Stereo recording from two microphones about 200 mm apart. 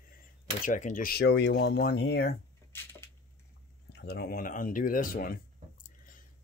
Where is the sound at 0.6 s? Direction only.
40° left (ahead or behind); by 2.3 s 55° left (ahead or behind).